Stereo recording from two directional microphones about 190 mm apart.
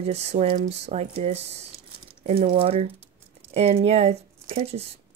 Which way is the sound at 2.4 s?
30° right (ahead or behind).